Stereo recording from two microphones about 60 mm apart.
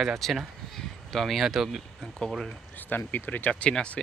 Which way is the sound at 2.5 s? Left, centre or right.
Left.